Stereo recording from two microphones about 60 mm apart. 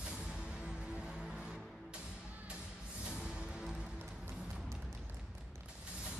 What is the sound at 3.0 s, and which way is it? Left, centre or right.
Music, centre.